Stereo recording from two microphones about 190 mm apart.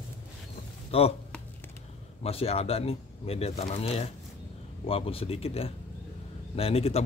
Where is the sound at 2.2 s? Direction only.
30° left (ahead or behind).